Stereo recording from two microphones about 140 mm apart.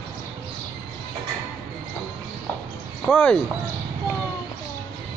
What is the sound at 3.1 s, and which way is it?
Speech, 5° left (ahead or behind).